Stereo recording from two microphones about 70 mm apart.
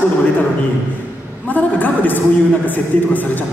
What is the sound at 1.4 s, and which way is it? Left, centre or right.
A woman's voice, left.